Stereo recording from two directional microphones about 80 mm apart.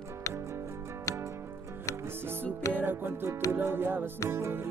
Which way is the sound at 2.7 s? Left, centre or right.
Right.